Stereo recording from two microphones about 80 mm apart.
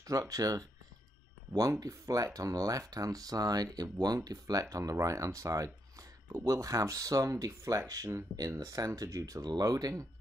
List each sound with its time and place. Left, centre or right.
0.0 s speech: right